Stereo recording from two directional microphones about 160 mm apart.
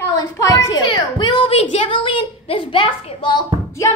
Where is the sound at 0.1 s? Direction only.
20° left (ahead or behind).